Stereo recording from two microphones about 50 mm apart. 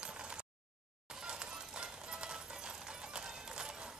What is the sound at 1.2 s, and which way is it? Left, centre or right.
Music, centre.